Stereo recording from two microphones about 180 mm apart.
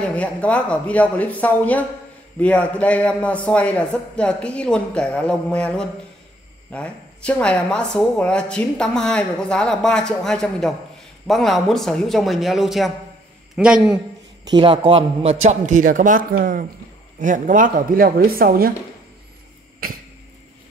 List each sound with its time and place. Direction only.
0.1 s a man's voice: 5° left (ahead or behind)
14.4 s a man's voice: 25° right (ahead or behind); by 18.7 s 55° right (ahead or behind)